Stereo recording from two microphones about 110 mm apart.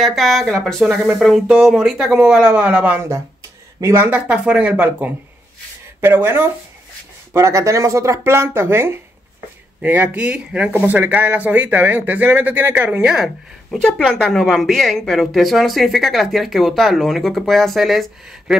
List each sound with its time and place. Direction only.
0.0 s speech: centre (ahead or behind); by 4.1 s 25° right (ahead or behind)
4.1 s speech: 10° right (ahead or behind)